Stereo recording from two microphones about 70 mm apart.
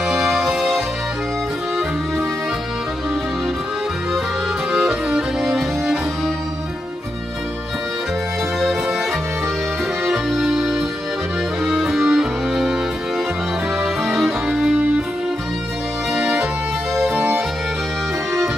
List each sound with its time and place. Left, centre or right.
0.1 s music: centre
4.7 s music: centre
10.0 s accordion: centre
11.6 s music: centre
14.0 s music: centre
16.2 s music: right